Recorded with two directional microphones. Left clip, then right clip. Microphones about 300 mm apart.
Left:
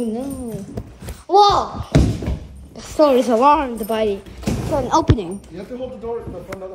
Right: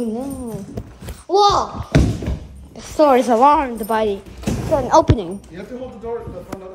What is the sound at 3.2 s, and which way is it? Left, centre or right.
A woman's voice, centre.